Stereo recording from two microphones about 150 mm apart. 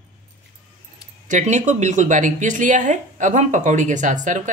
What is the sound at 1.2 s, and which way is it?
Speech, 55° right (ahead or behind).